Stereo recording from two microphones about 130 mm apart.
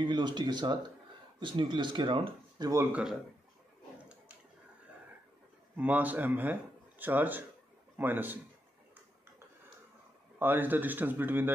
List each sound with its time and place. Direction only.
0.0 s speech: 35° right (ahead or behind)
2.7 s speech: 20° right (ahead or behind)
5.8 s speech: 10° right (ahead or behind)
10.4 s speech: 15° right (ahead or behind)